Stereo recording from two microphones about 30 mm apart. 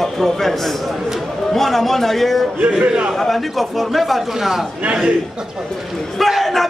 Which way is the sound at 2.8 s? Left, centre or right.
Right.